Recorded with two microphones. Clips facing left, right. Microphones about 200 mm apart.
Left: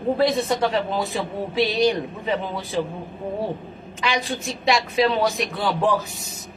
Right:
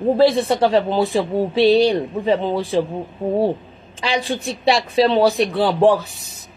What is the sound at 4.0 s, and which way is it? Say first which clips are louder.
A man's voice: right 4 dB; 30° right (ahead or behind).